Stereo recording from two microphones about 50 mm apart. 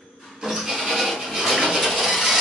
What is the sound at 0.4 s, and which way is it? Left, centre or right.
Rub, centre.